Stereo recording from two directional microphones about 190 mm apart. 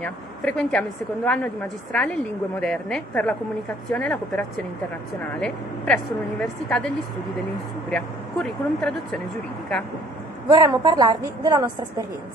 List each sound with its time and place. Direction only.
0.0 s a woman's voice: 5° left (ahead or behind)
7.9 s speech: 5° left (ahead or behind)
10.5 s a woman's voice: 20° right (ahead or behind)